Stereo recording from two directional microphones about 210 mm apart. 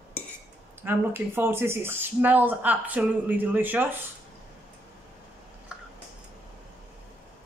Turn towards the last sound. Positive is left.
turn(degrees=-5)  # may be behind; listen again after turning